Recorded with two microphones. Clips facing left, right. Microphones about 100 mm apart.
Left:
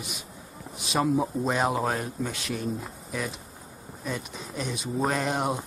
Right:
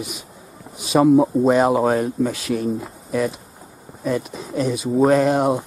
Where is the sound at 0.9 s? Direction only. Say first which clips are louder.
Right 11 dB; 20° right (ahead or behind).